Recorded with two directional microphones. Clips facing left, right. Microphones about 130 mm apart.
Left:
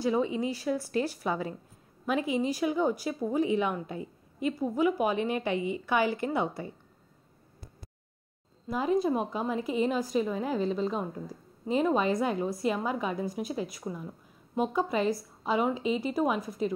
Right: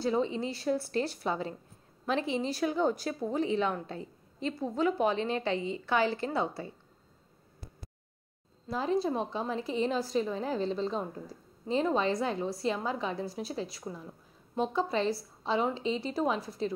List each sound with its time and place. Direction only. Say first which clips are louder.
0.0 s a woman's voice: left 2 dB; 15° left (ahead or behind)
8.6 s a woman's voice: left 3 dB; 15° left (ahead or behind)